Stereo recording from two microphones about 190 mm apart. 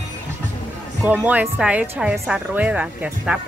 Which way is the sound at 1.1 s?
10° right (ahead or behind).